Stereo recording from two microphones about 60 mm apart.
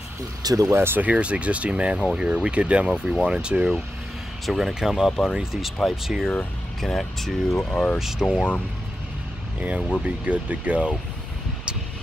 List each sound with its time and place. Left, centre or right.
0.4 s speech: right
0.7 s speech: right
1.0 s speech: right
4.5 s speech: centre
6.2 s speech: centre
7.7 s speech: centre
8.0 s speech: centre
10.0 s speech: right